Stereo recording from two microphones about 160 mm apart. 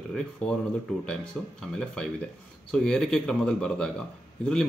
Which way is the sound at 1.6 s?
5° left (ahead or behind).